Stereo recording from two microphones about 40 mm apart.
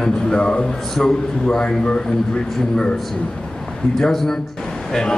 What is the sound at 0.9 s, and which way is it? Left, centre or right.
Speech, centre.